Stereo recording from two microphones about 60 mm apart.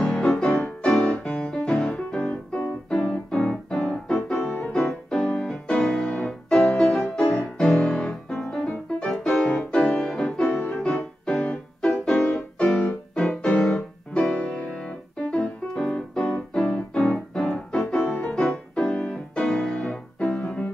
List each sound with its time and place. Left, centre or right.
0.0 s music: centre
1.2 s piano: centre
4.1 s music: centre
6.1 s music: centre
6.8 s music: centre
17.3 s piano: centre
18.3 s music: centre